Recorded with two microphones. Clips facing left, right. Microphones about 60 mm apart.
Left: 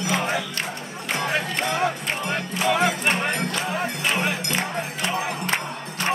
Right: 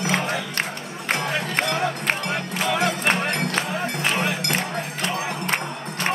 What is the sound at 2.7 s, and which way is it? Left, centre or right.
Music, centre.